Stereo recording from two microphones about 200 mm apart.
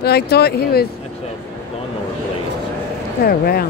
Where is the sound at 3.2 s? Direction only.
50° left (ahead or behind).